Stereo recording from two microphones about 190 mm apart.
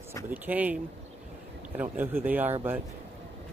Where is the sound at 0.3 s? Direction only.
10° right (ahead or behind).